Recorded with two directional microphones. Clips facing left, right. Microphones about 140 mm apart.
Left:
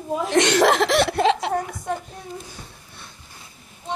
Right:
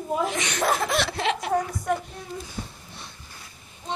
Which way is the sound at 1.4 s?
25° left (ahead or behind).